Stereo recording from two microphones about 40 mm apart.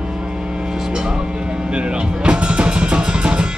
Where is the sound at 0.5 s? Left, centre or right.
Right.